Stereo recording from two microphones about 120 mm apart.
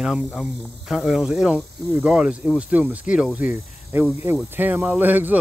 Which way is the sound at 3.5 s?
20° right (ahead or behind).